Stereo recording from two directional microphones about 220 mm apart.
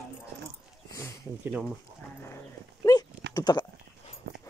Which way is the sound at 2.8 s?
15° left (ahead or behind).